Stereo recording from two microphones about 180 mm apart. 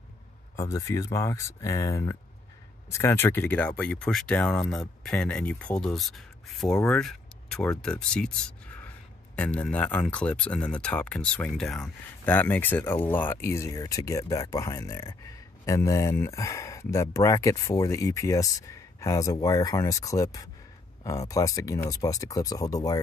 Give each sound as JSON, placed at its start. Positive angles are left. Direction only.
{"t": 0.6, "sound": "speech", "side_deg": 15}